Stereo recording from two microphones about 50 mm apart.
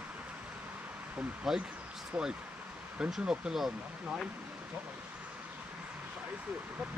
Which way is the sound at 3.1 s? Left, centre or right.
Centre.